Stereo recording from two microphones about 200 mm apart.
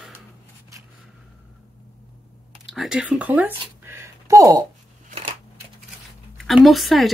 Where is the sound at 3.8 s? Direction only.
10° right (ahead or behind).